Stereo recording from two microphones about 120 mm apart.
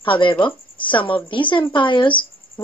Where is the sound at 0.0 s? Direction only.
45° left (ahead or behind).